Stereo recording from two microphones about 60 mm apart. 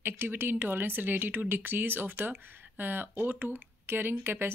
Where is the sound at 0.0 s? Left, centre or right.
Right.